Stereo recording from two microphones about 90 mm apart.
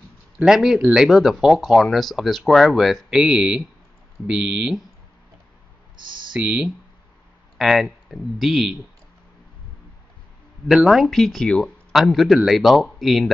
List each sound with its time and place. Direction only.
0.5 s speech: 5° right (ahead or behind)
5.9 s speech: 60° right (ahead or behind)
6.3 s speech: 10° right (ahead or behind)
10.7 s speech: 5° right (ahead or behind)